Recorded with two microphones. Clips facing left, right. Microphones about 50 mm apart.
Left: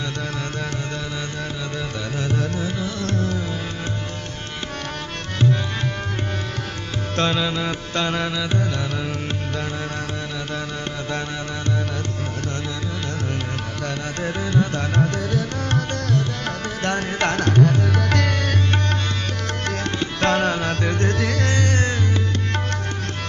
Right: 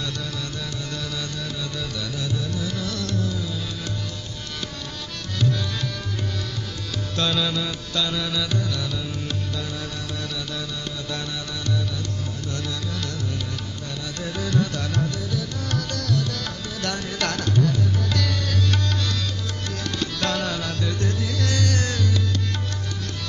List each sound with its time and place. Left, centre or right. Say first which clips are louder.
2.1 s music: left 6 dB; left
2.6 s carnatic music: left 3 dB; left
7.2 s music: left 3 dB; left
8.4 s music: left 2 dB; left
14.2 s music: left 2 dB; left
17.5 s tabla: left 4 dB; left
20.0 s music: left 6 dB; left
21.5 s music: left 3 dB; left